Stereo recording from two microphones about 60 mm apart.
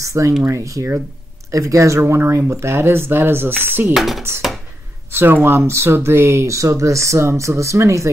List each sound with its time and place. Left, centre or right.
0.0 s speech: right
3.9 s speech: centre
5.1 s speech: right